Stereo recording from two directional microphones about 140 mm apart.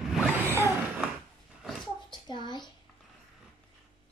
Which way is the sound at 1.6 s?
Centre (ahead or behind).